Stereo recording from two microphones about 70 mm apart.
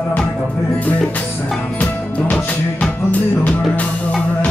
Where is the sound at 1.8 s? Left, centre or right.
Centre.